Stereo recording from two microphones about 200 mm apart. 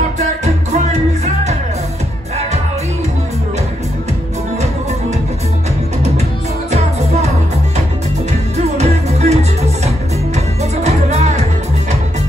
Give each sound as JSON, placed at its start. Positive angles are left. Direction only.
{"t": 0.2, "sound": "music", "side_deg": -35}
{"t": 8.3, "sound": "music", "side_deg": -35}